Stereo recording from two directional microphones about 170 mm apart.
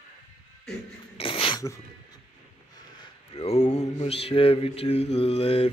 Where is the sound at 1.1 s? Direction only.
30° left (ahead or behind).